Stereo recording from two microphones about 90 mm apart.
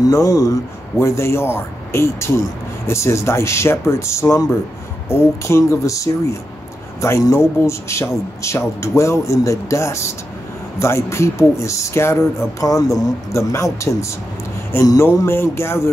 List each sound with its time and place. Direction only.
0.0 s speech: 40° left (ahead or behind)